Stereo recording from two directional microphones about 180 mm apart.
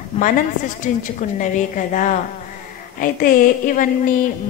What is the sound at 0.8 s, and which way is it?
A woman's voice, 45° left (ahead or behind).